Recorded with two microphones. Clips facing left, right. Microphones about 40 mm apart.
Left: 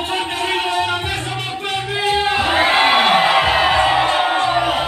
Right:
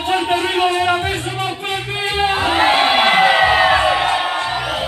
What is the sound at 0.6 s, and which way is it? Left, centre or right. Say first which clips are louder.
Music: right 3 dB; right.